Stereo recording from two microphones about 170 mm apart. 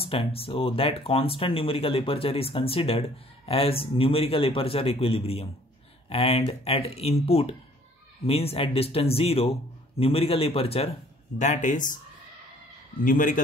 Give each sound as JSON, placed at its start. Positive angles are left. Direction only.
{"t": 0.1, "sound": "speech", "side_deg": 35}
{"t": 13.0, "sound": "speech", "side_deg": 50}